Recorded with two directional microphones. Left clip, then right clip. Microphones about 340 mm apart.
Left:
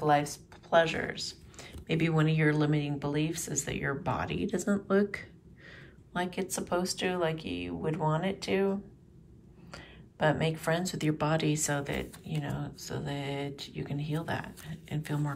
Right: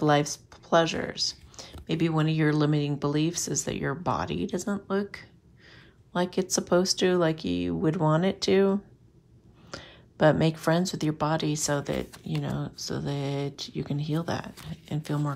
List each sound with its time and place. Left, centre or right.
0.0 s speech: centre
9.7 s speech: centre